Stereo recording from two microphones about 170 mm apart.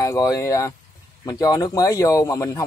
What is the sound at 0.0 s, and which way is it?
Speech, 20° left (ahead or behind).